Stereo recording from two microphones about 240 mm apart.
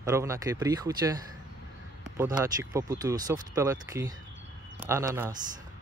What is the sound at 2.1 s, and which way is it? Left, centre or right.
Speech, centre.